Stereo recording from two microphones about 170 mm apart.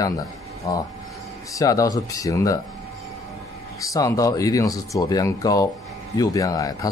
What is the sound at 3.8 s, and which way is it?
Speech, 20° left (ahead or behind).